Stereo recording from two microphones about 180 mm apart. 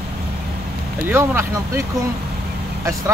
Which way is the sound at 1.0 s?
15° right (ahead or behind).